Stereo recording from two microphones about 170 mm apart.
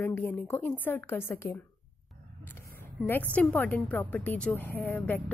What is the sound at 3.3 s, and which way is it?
A woman's voice, 10° left (ahead or behind).